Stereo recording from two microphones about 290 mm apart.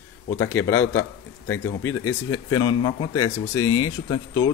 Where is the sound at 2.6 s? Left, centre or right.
Centre.